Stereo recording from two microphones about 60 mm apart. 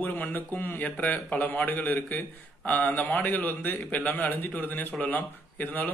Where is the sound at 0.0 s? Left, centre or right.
Left.